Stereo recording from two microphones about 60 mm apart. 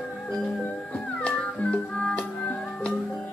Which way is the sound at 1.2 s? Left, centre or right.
Centre.